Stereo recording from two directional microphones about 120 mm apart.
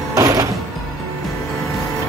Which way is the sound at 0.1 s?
30° right (ahead or behind).